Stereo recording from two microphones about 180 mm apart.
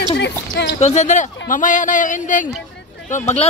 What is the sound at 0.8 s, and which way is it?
Speech, 40° left (ahead or behind).